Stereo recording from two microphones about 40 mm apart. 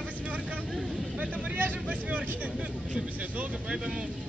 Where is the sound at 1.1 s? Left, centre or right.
Right.